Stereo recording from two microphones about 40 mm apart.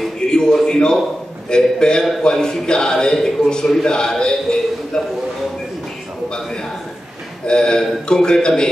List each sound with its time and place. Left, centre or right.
0.3 s a man's voice: centre
7.4 s a man's voice: centre